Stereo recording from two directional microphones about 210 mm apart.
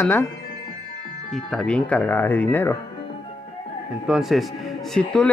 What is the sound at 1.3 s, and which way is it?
Speech, centre (ahead or behind).